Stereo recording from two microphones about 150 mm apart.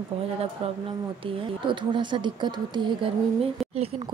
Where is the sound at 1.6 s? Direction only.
30° right (ahead or behind).